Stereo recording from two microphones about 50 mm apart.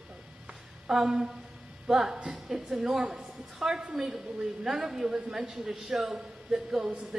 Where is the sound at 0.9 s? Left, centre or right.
Centre.